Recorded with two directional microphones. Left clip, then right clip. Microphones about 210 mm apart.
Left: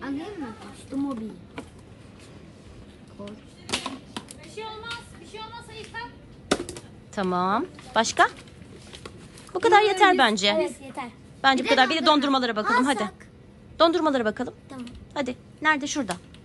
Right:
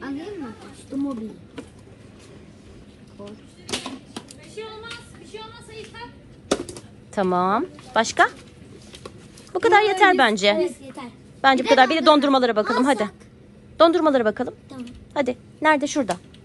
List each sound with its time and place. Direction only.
3.3 s typewriter: centre (ahead or behind)
4.6 s a sound: 30° left (ahead or behind)
6.5 s typewriter: 5° right (ahead or behind)
7.2 s a woman's voice: 15° left (ahead or behind)
9.5 s a woman's voice: 20° left (ahead or behind)